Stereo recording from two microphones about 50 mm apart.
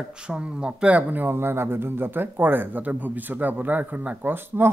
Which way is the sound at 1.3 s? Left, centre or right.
Right.